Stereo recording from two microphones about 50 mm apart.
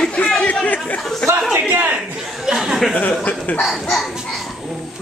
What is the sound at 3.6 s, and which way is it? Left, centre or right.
Speech, centre.